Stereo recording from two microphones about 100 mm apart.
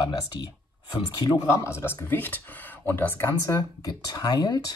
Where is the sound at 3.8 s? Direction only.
40° left (ahead or behind).